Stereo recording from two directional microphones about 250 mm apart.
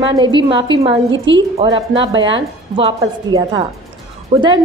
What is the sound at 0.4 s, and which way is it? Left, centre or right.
A woman's voice, centre.